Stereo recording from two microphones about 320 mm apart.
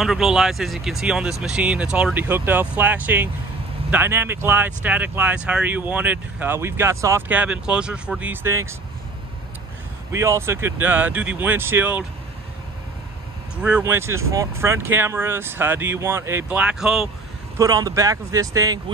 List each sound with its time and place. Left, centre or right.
0.0 s speech: centre
10.1 s speech: centre
13.6 s speech: centre